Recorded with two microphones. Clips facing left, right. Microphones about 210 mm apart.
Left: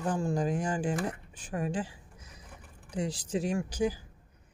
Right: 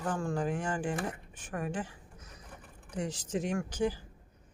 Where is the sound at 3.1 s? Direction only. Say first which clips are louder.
Left 1 dB; 35° left (ahead or behind).